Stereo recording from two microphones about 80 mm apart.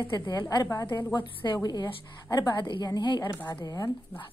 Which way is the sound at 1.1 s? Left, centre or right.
Left.